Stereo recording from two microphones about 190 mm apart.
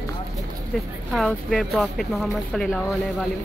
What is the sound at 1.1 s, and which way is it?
Speech, centre (ahead or behind).